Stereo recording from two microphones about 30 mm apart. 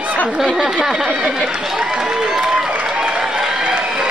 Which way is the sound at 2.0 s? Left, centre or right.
Right.